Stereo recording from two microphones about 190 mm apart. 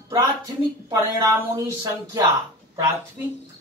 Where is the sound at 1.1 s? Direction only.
15° right (ahead or behind).